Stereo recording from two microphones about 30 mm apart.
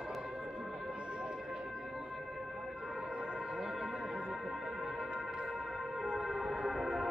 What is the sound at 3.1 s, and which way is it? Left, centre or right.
Music, right.